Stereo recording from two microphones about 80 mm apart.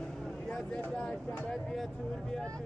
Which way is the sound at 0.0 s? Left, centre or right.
Centre.